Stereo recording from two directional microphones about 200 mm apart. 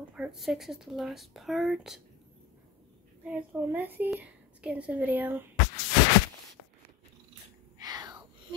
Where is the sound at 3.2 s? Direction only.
10° right (ahead or behind).